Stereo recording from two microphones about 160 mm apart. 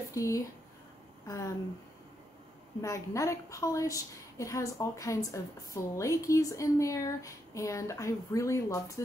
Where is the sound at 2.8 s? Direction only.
20° left (ahead or behind).